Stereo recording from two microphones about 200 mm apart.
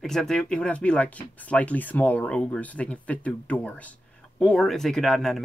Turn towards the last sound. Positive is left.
turn(degrees=0)  # may be behind; listen again after turning